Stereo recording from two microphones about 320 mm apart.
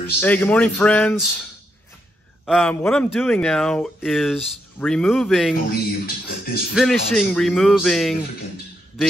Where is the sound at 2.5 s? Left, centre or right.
Centre.